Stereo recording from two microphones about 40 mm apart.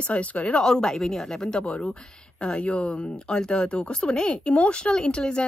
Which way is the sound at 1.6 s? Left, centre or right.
Left.